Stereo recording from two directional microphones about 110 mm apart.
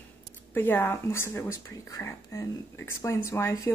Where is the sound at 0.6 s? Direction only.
20° left (ahead or behind).